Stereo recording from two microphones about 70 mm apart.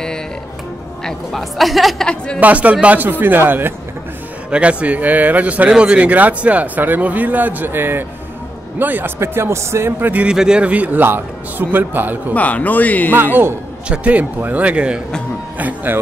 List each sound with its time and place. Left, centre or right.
1.0 s a woman's voice: centre
2.0 s a woman's voice: centre
2.4 s speech: right
4.5 s speech: centre
9.2 s speech: right
10.2 s speech: centre; by 12.2 s right
12.4 s speech: left
13.8 s speech: centre
15.6 s speech: right